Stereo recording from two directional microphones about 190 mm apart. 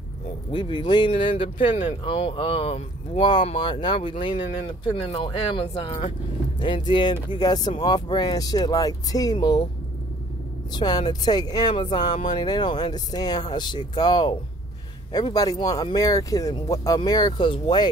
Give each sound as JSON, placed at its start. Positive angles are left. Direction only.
{"t": 0.5, "sound": "speech", "side_deg": 25}
{"t": 10.7, "sound": "speech", "side_deg": 20}